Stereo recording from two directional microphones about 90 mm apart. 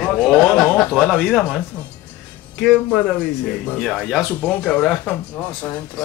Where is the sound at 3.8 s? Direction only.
Centre (ahead or behind).